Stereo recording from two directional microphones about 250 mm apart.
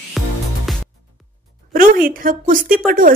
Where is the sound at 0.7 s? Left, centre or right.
Centre.